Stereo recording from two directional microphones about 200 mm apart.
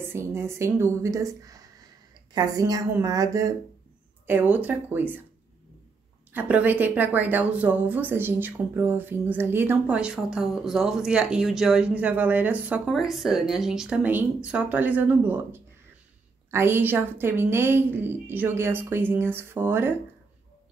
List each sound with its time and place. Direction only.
0.0 s a woman's voice: 10° right (ahead or behind)
6.3 s a woman's voice: 10° right (ahead or behind)